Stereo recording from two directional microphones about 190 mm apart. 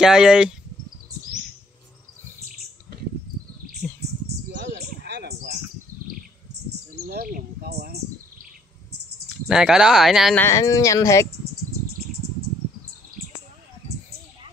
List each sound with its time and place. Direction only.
0.0 s speech: 5° right (ahead or behind)
4.5 s bird: 65° right (ahead or behind)
7.1 s bird: 55° right (ahead or behind)
9.5 s speech: 5° right (ahead or behind)
10.4 s speech: 15° left (ahead or behind)